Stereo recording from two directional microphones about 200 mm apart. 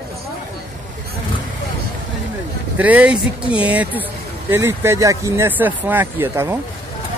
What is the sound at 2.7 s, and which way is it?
Speech, 10° right (ahead or behind).